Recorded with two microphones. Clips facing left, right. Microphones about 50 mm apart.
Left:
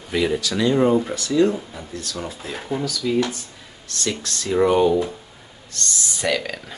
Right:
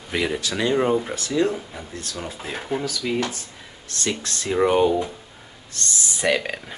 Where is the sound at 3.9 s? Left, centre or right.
Right.